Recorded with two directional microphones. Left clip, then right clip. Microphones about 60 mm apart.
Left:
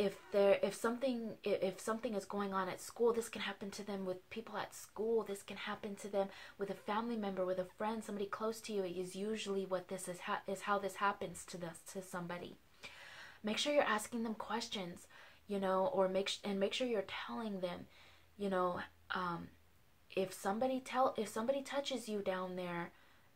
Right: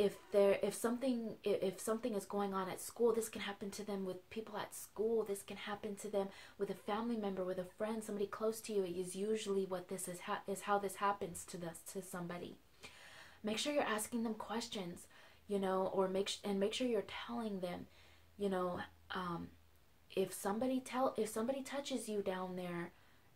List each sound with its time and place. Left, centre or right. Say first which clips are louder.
0.0 s speech: even; centre
4.9 s speech: even; left